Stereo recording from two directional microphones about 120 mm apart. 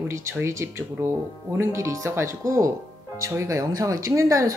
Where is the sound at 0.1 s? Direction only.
25° right (ahead or behind).